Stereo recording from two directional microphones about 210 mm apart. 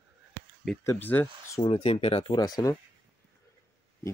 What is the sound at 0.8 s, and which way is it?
Speech, 10° left (ahead or behind).